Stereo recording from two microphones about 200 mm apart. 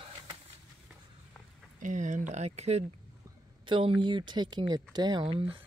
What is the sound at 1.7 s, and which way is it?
Speech, 40° right (ahead or behind).